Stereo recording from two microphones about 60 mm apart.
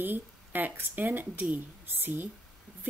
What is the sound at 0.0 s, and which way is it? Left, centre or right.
A woman's voice, right.